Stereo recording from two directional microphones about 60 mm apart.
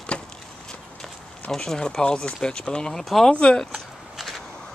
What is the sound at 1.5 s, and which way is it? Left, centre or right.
Speech, centre.